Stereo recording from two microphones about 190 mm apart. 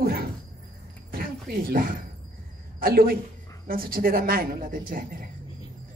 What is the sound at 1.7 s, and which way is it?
A woman's voice, 50° right (ahead or behind).